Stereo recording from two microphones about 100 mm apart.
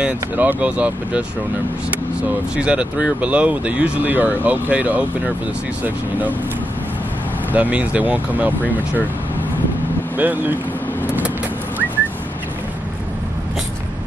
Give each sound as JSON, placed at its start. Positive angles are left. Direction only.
{"t": 0.0, "sound": "speech", "side_deg": -15}
{"t": 2.5, "sound": "speech", "side_deg": -10}
{"t": 7.5, "sound": "speech", "side_deg": -15}
{"t": 10.1, "sound": "speech", "side_deg": -20}